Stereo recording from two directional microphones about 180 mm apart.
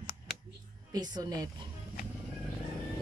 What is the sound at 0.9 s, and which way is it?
Speech, 20° right (ahead or behind).